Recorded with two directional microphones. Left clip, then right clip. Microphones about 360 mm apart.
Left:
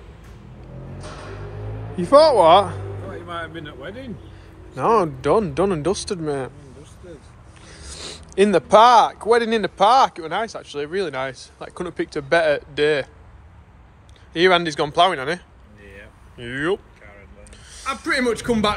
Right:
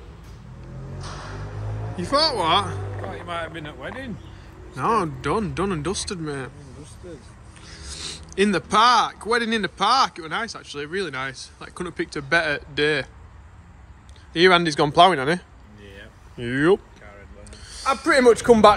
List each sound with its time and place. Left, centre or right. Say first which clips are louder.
2.0 s speech: left 9 dB; centre
3.3 s speech: even; right
4.7 s speech: left 4 dB; centre
7.6 s speech: right 1 dB; centre
14.3 s speech: even; centre
17.5 s snake: right 4 dB; centre
18.0 s speech: right 6 dB; centre